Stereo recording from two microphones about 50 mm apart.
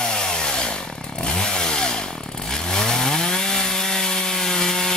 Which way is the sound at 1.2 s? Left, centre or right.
Centre.